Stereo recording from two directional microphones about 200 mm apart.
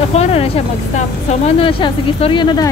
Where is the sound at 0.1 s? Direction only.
30° left (ahead or behind).